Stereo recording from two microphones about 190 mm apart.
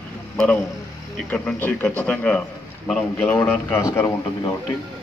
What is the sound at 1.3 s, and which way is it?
Speech, 10° left (ahead or behind).